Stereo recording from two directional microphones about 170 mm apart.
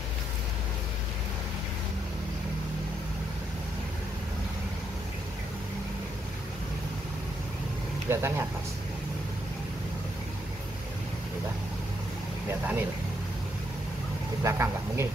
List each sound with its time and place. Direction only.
8.1 s speech: 15° right (ahead or behind)
12.4 s vehicle: 10° right (ahead or behind)
14.4 s a sound: 15° right (ahead or behind)